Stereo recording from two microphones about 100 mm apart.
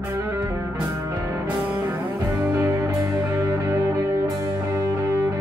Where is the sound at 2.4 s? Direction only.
25° right (ahead or behind).